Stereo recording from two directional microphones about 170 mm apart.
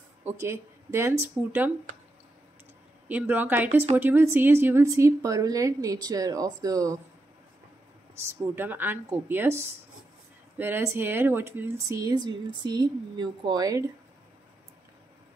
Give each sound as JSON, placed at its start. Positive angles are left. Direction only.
{"t": 0.2, "sound": "speech", "side_deg": -15}
{"t": 3.1, "sound": "speech", "side_deg": -10}
{"t": 8.2, "sound": "speech", "side_deg": -15}